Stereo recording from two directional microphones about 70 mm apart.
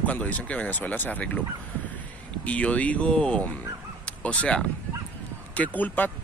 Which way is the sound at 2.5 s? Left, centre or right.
Centre.